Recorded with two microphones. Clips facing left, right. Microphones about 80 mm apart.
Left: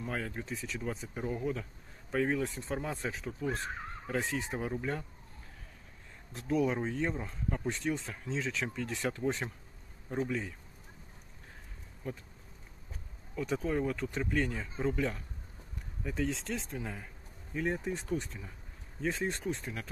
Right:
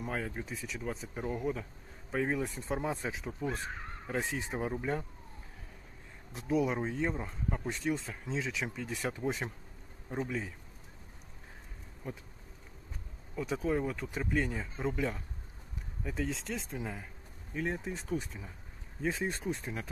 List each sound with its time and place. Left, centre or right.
0.0 s speech: centre
6.3 s speech: centre
12.0 s speech: centre
13.4 s speech: centre
19.6 s speech: centre